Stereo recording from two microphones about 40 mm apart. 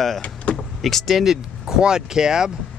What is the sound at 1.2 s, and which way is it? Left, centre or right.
Speech, centre.